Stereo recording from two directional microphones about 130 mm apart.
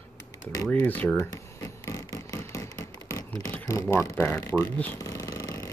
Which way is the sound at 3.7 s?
25° left (ahead or behind).